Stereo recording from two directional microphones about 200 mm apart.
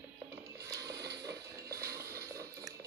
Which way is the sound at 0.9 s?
60° right (ahead or behind).